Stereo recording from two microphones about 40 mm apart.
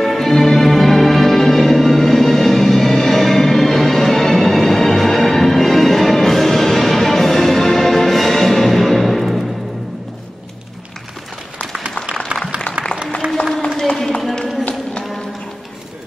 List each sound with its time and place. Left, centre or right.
0.0 s music: centre
13.2 s run: right
13.7 s a sound: centre